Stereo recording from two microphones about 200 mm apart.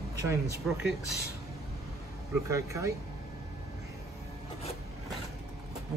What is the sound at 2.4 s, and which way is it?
Speech, 15° right (ahead or behind).